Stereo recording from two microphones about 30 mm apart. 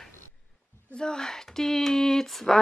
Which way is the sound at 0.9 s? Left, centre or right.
Left.